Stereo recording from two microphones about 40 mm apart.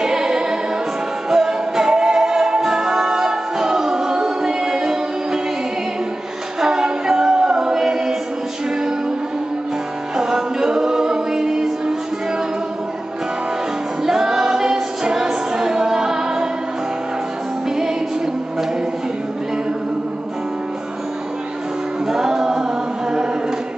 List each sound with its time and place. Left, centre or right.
0.0 s music: centre
6.6 s a capella: centre
10.1 s music: centre
14.0 s music: centre
17.6 s music: centre
22.0 s music: centre